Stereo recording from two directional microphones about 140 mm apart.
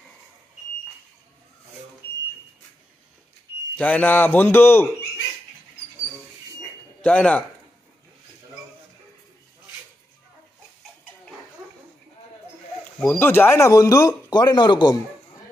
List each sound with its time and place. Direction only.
3.7 s speech: 10° left (ahead or behind)
7.0 s speech: 10° left (ahead or behind)
13.0 s speech: 15° left (ahead or behind); by 15.0 s 30° left (ahead or behind)